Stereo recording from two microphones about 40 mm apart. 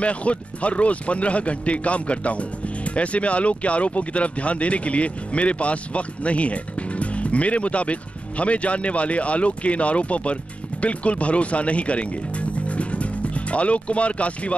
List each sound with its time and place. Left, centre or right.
0.0 s speech: left